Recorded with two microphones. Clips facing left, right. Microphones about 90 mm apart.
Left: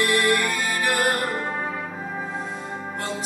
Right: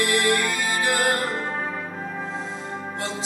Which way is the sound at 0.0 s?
20° right (ahead or behind).